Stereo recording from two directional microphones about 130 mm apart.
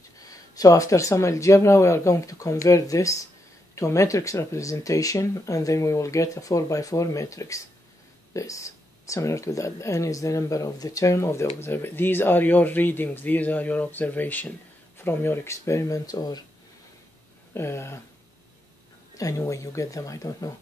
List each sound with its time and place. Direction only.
0.2 s speech: 25° left (ahead or behind)
17.6 s speech: 20° left (ahead or behind)
19.1 s speech: 25° left (ahead or behind)